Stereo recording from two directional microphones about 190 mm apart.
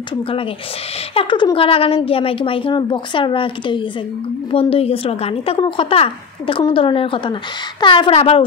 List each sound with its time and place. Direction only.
1.1 s a woman's voice: 25° left (ahead or behind)